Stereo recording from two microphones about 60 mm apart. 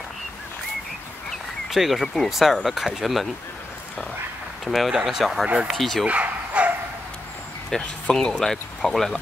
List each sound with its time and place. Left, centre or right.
1.7 s speech: centre
4.6 s speech: centre
6.0 s dog: right
7.7 s speech: centre